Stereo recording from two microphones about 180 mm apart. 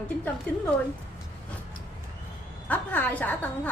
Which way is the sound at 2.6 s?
10° left (ahead or behind).